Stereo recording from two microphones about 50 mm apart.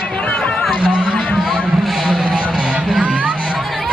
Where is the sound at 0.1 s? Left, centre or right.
Left.